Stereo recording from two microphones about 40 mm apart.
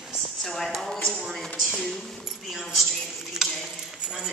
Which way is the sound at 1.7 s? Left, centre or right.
Centre.